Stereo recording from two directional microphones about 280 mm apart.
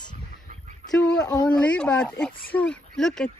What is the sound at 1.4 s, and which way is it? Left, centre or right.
Speech, centre.